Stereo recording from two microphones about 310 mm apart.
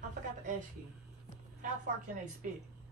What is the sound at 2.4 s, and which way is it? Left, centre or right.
Speech, right.